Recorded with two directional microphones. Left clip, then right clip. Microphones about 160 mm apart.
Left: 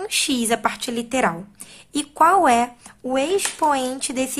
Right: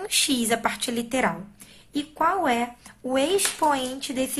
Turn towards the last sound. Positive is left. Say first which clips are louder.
# left 4 dB
turn(degrees=30)  # may be behind; listen again after turning